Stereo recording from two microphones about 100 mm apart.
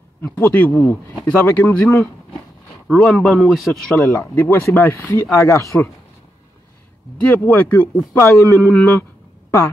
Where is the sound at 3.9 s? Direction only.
30° left (ahead or behind).